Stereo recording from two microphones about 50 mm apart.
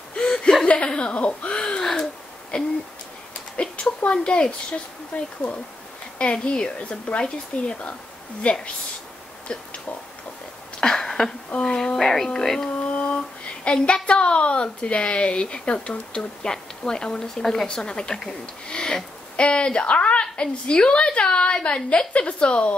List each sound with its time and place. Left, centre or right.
0.1 s chuckle: centre
0.7 s a woman's voice: left
3.7 s a woman's voice: left
10.8 s a sound: centre
11.5 s speech: centre
12.0 s a woman's voice: centre
12.7 s a sound: left
13.7 s a woman's voice: centre